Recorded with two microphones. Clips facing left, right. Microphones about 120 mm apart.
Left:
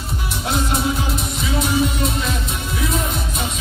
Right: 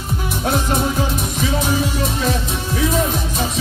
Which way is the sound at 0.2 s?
45° right (ahead or behind).